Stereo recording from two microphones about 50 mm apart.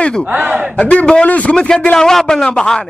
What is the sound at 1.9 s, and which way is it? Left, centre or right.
Speech, centre.